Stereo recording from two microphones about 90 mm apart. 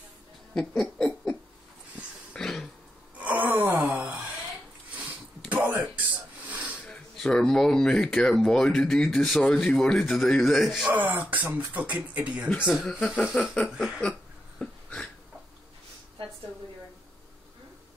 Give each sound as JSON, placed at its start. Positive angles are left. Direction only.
{"t": 0.6, "sound": "speech", "side_deg": 5}
{"t": 2.3, "sound": "throat clearing", "side_deg": 5}
{"t": 3.2, "sound": "wail", "side_deg": -20}
{"t": 5.5, "sound": "a sound", "side_deg": -20}
{"t": 6.9, "sound": "speech", "side_deg": 10}
{"t": 9.4, "sound": "speech", "side_deg": 15}
{"t": 10.9, "sound": "speech", "side_deg": -20}
{"t": 14.6, "sound": "a sound", "side_deg": 10}